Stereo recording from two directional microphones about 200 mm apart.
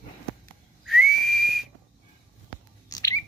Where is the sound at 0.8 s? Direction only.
Centre (ahead or behind).